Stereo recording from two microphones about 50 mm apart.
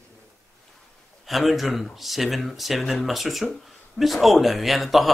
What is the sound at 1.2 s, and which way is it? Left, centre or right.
Speech, centre.